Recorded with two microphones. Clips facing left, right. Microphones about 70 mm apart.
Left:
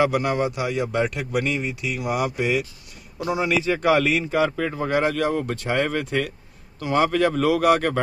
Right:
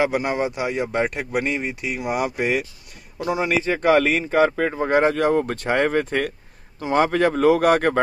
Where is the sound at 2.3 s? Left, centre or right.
Right.